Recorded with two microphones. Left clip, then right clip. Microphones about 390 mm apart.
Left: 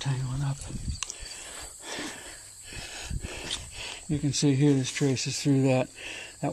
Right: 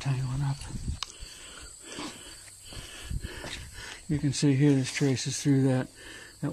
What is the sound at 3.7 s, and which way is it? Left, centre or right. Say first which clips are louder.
Speech: left 1 dB; centre.